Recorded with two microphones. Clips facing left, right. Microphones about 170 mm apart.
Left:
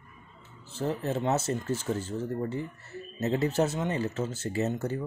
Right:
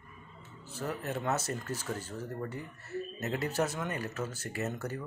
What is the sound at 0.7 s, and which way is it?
Speech, 25° left (ahead or behind).